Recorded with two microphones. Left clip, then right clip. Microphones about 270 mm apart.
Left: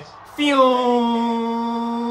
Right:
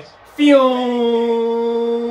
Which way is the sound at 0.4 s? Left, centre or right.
Centre.